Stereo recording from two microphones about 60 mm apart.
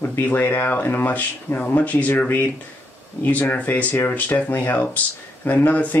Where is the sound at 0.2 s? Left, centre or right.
Left.